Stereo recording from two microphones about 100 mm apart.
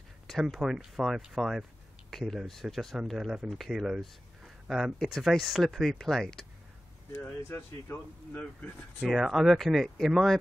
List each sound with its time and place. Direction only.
0.3 s speech: centre (ahead or behind)
7.1 s speech: 25° left (ahead or behind)
9.0 s speech: centre (ahead or behind)